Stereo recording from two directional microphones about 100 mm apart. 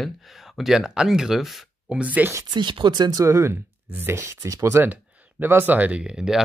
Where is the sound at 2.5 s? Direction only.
55° right (ahead or behind); by 4.8 s 30° right (ahead or behind).